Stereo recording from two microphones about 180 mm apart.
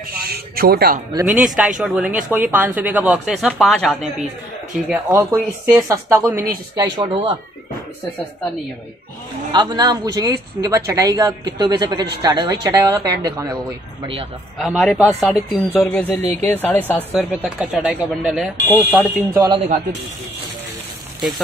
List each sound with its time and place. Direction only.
0.2 s a sound: 60° right (ahead or behind)
1.2 s speech: 5° right (ahead or behind)
5.1 s speech: 15° right (ahead or behind)
6.8 s speech: 25° right (ahead or behind)
9.5 s speech: 25° right (ahead or behind)
14.6 s speech: centre (ahead or behind)
17.1 s speech: centre (ahead or behind)
18.9 s speech: 10° left (ahead or behind)
19.3 s speech: 20° right (ahead or behind)